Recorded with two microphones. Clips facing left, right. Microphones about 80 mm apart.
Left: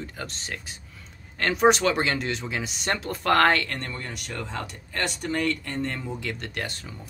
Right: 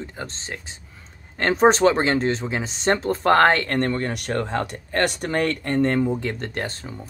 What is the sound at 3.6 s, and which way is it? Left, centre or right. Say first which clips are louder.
Speech: right 11 dB; right.